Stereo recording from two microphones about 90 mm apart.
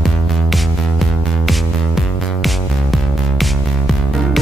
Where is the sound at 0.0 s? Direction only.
Centre (ahead or behind).